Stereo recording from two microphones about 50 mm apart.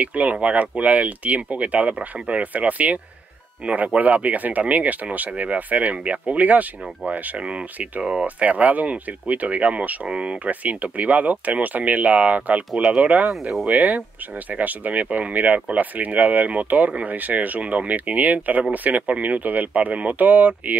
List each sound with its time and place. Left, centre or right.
0.0 s speech: right